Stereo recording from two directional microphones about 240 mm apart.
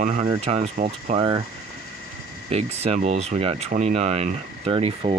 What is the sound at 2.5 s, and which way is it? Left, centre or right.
Speech, right.